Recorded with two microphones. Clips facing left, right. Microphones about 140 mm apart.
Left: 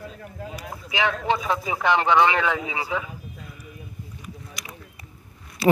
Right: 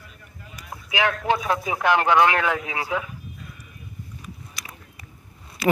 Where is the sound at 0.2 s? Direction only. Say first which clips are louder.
Left 11 dB; 90° left.